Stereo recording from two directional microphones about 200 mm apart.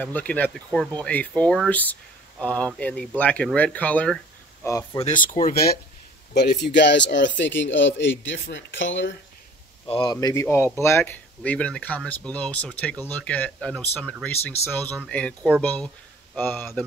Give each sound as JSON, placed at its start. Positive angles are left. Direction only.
{"t": 0.0, "sound": "speech", "side_deg": 5}
{"t": 4.9, "sound": "speech", "side_deg": 30}
{"t": 5.2, "sound": "speech", "side_deg": 45}
{"t": 6.3, "sound": "speech", "side_deg": 55}
{"t": 9.8, "sound": "speech", "side_deg": 25}